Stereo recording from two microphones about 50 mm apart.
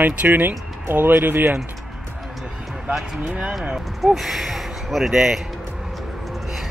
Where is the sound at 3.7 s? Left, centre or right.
Centre.